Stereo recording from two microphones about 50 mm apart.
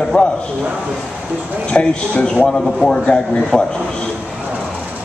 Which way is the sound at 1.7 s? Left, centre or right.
Left.